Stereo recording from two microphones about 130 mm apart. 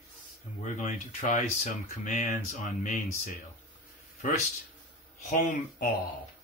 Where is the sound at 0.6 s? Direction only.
70° left (ahead or behind); by 3.0 s 90° left.